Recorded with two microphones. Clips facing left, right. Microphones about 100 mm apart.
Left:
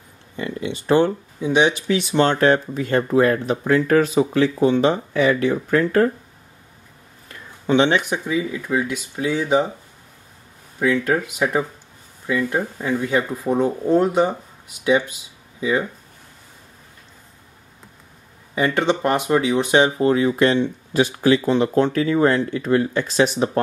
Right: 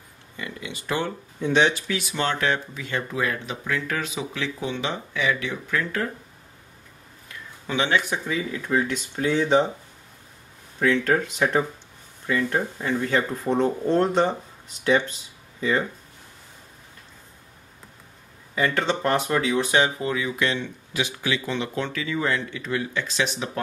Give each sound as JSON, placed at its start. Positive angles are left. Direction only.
{"t": 0.4, "sound": "speech", "side_deg": 35}
{"t": 1.4, "sound": "speech", "side_deg": 15}
{"t": 1.9, "sound": "speech", "side_deg": 30}
{"t": 7.2, "sound": "speech", "side_deg": 30}
{"t": 10.8, "sound": "speech", "side_deg": 10}
{"t": 18.5, "sound": "speech", "side_deg": 15}
{"t": 20.0, "sound": "speech", "side_deg": 40}